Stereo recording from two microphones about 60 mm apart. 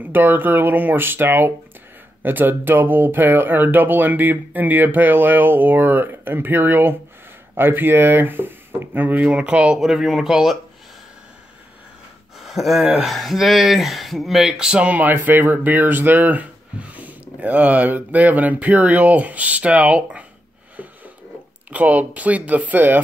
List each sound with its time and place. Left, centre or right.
0.0 s speech: right; by 9.8 s centre
9.8 s speech: centre
12.4 s a sound: centre
13.1 s speech: centre; by 15.1 s right
15.1 s speech: right
20.7 s a sound: right
21.6 s speech: right